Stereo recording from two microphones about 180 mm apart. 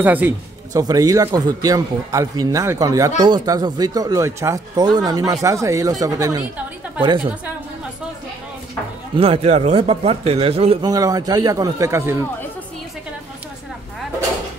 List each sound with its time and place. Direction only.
0.0 s a man's voice: 10° right (ahead or behind)
9.1 s a man's voice: 30° right (ahead or behind)
10.9 s a man's voice: 20° right (ahead or behind)